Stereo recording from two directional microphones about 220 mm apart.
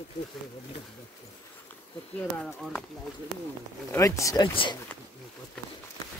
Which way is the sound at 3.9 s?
15° left (ahead or behind).